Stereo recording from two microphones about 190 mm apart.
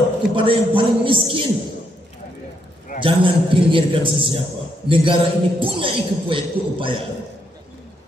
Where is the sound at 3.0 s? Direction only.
25° right (ahead or behind).